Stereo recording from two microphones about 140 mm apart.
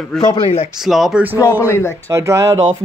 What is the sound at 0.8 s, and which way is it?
Speech, centre (ahead or behind).